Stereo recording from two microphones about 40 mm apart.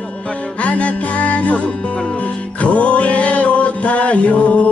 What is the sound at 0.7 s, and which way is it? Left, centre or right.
Music, left.